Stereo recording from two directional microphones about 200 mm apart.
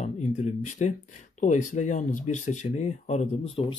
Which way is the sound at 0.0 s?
35° left (ahead or behind).